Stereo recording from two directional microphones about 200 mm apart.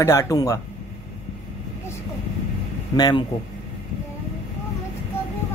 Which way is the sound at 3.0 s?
20° left (ahead or behind).